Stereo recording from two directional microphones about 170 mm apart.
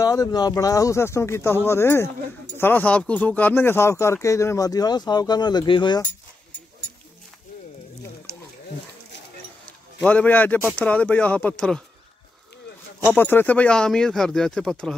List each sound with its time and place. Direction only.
0.0 s speech: 20° left (ahead or behind)
10.0 s speech: 10° left (ahead or behind)
13.1 s speech: 10° left (ahead or behind)